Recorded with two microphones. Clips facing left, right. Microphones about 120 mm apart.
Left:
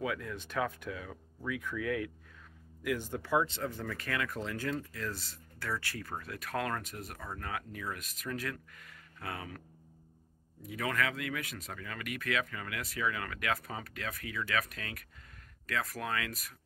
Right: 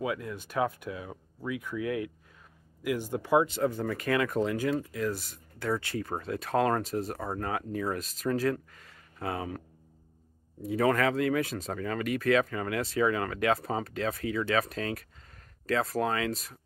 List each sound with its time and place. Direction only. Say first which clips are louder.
0.0 s speech: right 4 dB; 15° right (ahead or behind)
10.6 s speech: right 9 dB; 30° right (ahead or behind)